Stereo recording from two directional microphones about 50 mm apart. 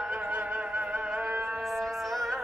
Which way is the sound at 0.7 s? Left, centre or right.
Centre.